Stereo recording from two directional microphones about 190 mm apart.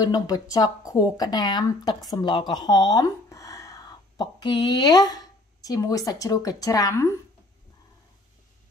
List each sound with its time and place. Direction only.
0.0 s speech: 20° left (ahead or behind)